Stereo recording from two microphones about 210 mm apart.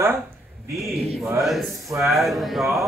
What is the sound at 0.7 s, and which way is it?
Speech, centre (ahead or behind).